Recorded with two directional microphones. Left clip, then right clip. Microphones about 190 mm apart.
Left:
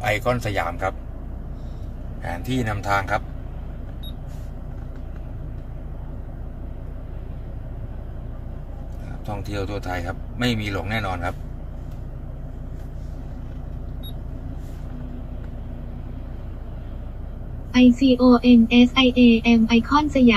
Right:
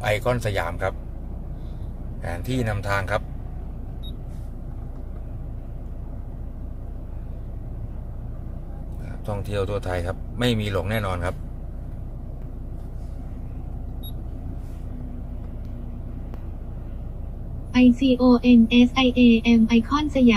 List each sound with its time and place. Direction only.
0.0 s speech: 25° right (ahead or behind)
2.2 s speech: 25° right (ahead or behind)
9.6 s a man's voice: 30° right (ahead or behind)
17.7 s a woman's voice: 5° right (ahead or behind)